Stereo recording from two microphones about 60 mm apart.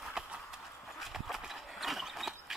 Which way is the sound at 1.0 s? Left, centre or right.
Centre.